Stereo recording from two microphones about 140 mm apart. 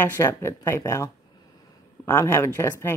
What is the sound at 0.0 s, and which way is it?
A woman's voice, 15° left (ahead or behind).